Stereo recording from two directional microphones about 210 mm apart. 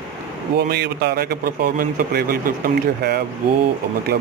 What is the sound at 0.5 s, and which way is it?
Speech, 50° right (ahead or behind).